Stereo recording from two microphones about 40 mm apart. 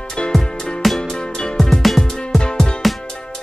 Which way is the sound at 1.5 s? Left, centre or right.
Centre.